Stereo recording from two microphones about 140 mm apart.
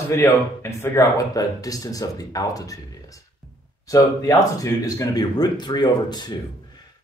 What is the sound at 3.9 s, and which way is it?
Speech, 25° left (ahead or behind).